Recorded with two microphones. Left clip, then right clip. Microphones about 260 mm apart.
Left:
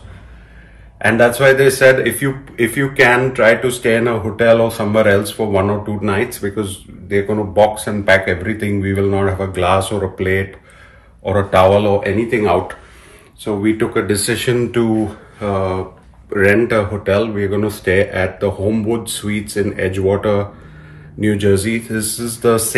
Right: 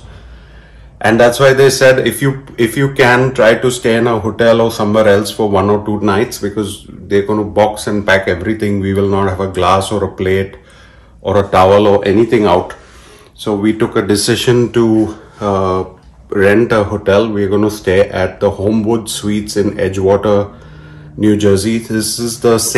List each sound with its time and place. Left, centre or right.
0.9 s a man's voice: centre